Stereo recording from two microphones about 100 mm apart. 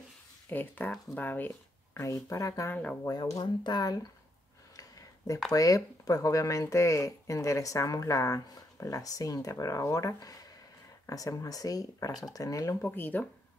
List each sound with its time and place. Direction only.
0.5 s speech: 15° left (ahead or behind)
2.0 s speech: 30° left (ahead or behind)
2.7 s speech: 15° left (ahead or behind)
3.1 s speech: 35° left (ahead or behind)
4.7 s a sound: 35° left (ahead or behind)
5.5 s speech: 35° left (ahead or behind)
12.8 s speech: 20° left (ahead or behind)